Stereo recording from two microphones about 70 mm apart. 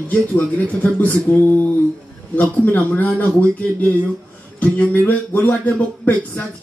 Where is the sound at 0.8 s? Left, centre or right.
Left.